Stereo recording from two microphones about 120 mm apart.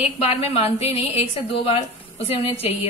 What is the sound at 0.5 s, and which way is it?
A woman's voice, 60° left (ahead or behind).